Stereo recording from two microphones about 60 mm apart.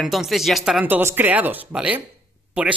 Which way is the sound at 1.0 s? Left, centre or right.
Right.